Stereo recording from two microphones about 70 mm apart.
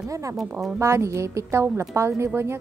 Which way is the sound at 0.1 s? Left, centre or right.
Right.